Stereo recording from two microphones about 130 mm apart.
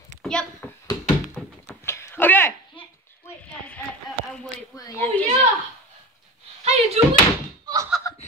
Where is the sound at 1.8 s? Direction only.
20° left (ahead or behind).